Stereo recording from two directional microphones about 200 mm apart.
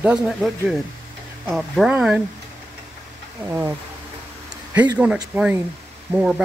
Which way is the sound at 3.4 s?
10° right (ahead or behind).